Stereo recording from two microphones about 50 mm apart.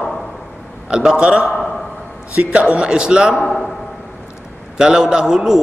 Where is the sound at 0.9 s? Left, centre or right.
Centre.